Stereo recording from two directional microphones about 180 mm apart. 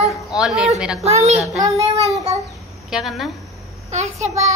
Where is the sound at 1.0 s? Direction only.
35° right (ahead or behind).